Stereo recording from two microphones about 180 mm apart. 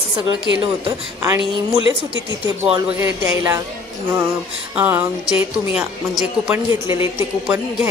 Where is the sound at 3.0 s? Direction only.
15° right (ahead or behind).